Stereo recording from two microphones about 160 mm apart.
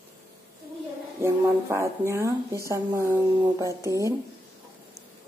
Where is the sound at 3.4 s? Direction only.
20° right (ahead or behind).